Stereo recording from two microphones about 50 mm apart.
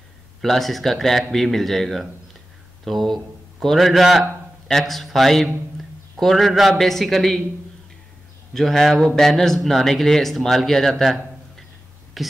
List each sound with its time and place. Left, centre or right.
0.4 s a man's voice: centre
8.5 s speech: centre